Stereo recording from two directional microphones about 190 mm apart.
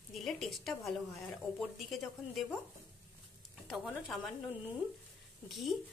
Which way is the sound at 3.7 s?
Centre (ahead or behind).